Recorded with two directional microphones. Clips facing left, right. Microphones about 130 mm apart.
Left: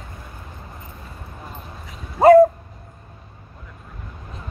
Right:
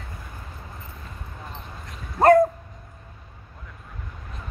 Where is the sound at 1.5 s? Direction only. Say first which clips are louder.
Left 1 dB; 5° left (ahead or behind).